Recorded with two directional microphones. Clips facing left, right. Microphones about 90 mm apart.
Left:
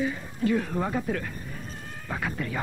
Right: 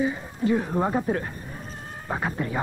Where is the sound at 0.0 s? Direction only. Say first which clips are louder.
Right 2 dB; 25° right (ahead or behind).